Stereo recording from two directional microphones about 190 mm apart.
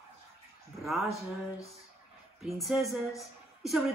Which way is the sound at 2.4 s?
Centre (ahead or behind).